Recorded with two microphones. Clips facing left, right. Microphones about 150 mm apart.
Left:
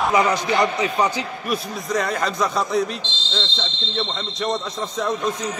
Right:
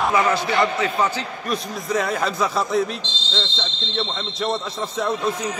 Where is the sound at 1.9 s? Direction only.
Centre (ahead or behind).